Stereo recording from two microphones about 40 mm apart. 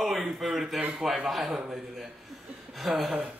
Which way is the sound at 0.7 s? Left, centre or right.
Right.